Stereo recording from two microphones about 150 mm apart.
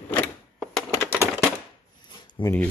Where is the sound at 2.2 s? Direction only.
30° left (ahead or behind).